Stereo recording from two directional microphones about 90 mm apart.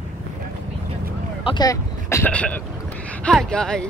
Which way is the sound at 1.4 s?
60° left (ahead or behind).